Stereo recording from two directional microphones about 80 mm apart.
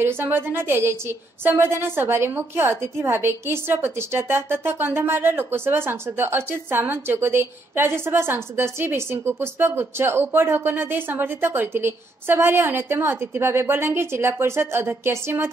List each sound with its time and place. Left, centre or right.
0.0 s a woman's voice: right